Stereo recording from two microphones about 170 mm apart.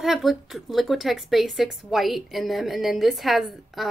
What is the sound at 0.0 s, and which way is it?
Speech, centre (ahead or behind).